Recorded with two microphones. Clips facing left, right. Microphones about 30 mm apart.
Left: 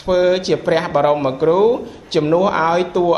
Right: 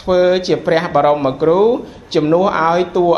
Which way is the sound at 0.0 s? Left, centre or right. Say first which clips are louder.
Right 2 dB; centre.